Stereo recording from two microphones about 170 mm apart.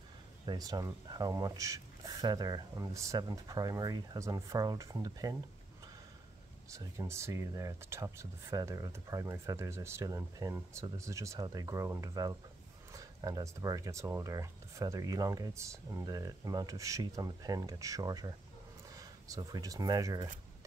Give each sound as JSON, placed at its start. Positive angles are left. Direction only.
{"t": 0.5, "sound": "speech", "side_deg": -20}
{"t": 6.7, "sound": "speech", "side_deg": -15}